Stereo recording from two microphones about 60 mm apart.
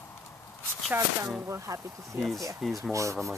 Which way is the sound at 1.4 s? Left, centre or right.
Right.